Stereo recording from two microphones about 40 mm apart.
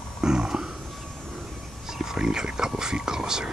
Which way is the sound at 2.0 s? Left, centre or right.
Centre.